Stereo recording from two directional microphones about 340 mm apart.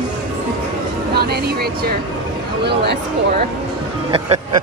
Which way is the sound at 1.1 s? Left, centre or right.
Right.